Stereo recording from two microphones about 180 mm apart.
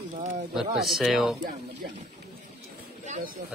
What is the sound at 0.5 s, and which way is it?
Speech, centre (ahead or behind).